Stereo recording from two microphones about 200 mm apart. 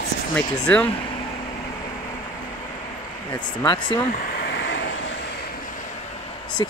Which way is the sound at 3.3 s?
20° left (ahead or behind).